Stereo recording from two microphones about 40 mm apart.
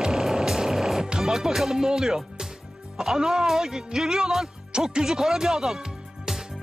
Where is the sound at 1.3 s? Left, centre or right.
Centre.